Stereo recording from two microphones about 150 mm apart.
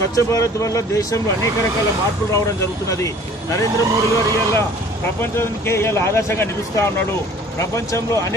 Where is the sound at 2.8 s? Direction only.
20° left (ahead or behind).